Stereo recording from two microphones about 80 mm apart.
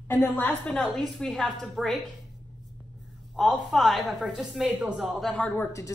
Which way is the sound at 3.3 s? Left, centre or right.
Centre.